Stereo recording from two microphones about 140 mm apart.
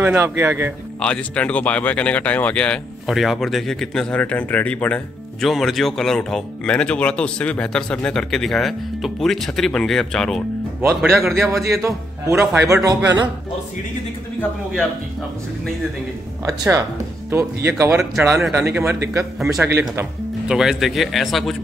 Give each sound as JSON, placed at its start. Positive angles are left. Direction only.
{"t": 0.0, "sound": "speech", "side_deg": -15}
{"t": 0.9, "sound": "speech", "side_deg": 10}
{"t": 11.1, "sound": "a man's voice", "side_deg": -15}
{"t": 16.4, "sound": "a man's voice", "side_deg": -25}
{"t": 20.4, "sound": "a man's voice", "side_deg": -5}